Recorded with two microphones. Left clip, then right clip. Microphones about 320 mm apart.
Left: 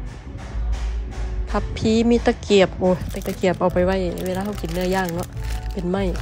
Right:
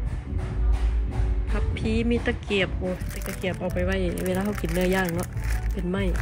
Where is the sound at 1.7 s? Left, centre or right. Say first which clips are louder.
Left 8 dB; centre.